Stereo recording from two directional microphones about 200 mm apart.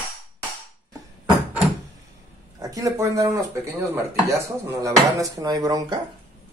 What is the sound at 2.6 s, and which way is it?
Speech, 15° right (ahead or behind).